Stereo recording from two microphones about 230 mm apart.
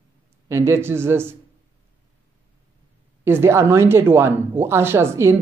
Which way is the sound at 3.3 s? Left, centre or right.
Centre.